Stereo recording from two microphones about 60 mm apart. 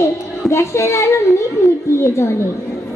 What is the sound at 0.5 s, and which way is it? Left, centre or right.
Child singing, left.